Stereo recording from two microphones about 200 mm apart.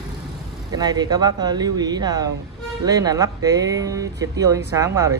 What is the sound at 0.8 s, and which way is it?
Speech, 20° right (ahead or behind).